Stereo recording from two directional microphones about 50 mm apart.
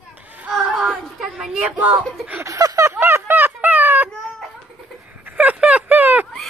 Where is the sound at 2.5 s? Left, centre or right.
Right.